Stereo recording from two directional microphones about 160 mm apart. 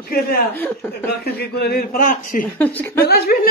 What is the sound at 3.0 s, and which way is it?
Speech, 75° left (ahead or behind).